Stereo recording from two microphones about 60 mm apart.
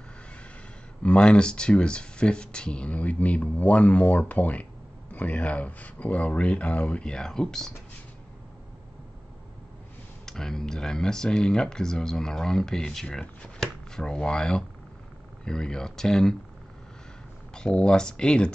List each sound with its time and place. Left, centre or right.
1.0 s speech: centre
10.2 s speech: centre
17.6 s speech: centre